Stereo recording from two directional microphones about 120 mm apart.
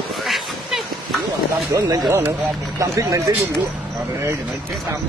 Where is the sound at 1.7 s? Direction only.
35° right (ahead or behind).